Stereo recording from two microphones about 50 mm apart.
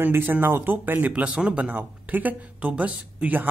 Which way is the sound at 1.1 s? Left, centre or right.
Right.